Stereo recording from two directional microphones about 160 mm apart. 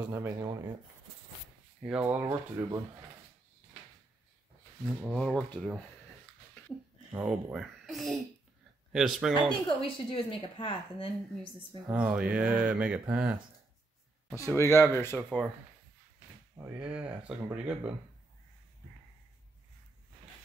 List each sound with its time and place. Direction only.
0.1 s speech: 15° right (ahead or behind)
1.9 s speech: 10° right (ahead or behind)
4.8 s a child's voice: centre (ahead or behind)
7.1 s a child's voice: 10° right (ahead or behind)
9.7 s a woman's voice: 30° left (ahead or behind)
11.9 s speech: 5° right (ahead or behind)
14.3 s speech: 20° left (ahead or behind)
16.5 s speech: 10° right (ahead or behind)